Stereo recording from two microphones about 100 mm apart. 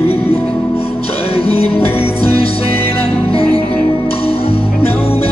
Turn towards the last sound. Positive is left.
turn(degrees=70)  # may be behind; listen again after turning